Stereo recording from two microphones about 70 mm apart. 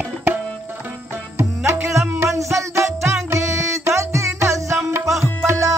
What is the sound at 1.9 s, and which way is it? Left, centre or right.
Music, right.